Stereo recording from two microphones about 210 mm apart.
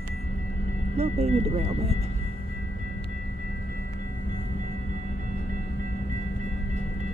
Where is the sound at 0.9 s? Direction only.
30° right (ahead or behind).